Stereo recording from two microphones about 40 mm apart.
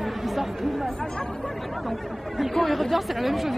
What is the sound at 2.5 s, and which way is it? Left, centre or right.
Speech, centre.